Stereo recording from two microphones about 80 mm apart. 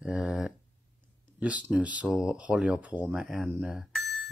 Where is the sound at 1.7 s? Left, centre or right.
Centre.